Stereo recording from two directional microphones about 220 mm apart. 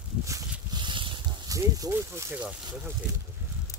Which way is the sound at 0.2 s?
15° right (ahead or behind).